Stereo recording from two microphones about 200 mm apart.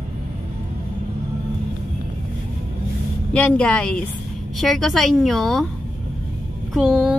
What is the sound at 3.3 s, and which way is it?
Speech, 5° left (ahead or behind).